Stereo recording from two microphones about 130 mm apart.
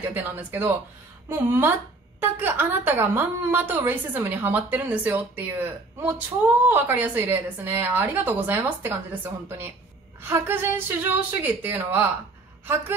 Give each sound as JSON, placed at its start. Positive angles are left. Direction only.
{"t": 0.1, "sound": "a woman's voice", "side_deg": -15}